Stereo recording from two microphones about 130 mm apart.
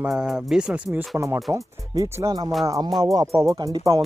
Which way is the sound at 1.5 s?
25° right (ahead or behind).